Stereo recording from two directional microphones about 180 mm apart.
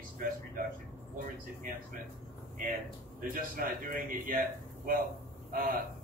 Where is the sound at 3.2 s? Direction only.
50° right (ahead or behind).